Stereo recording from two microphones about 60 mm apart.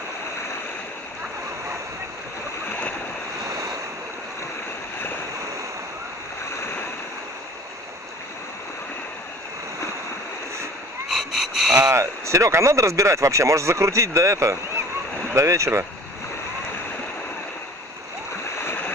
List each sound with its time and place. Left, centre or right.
3.4 s waves: right
11.1 s a sound: centre
11.9 s speech: right